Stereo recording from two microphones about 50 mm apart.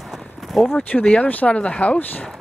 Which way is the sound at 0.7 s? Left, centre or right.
Left.